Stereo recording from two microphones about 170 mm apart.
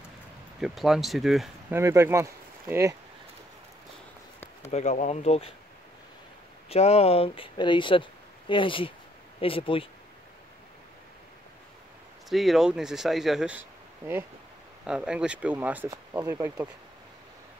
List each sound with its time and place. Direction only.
0.6 s speech: centre (ahead or behind)
1.7 s speech: 15° right (ahead or behind)
4.6 s speech: 45° left (ahead or behind)
6.7 s speech: 35° left (ahead or behind)
12.3 s speech: centre (ahead or behind); by 16.6 s 20° right (ahead or behind)